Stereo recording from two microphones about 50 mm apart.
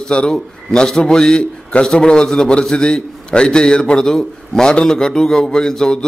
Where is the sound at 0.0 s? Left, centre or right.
Centre.